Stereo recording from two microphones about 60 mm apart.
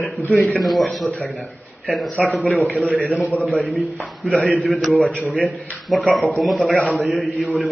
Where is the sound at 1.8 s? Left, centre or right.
Centre.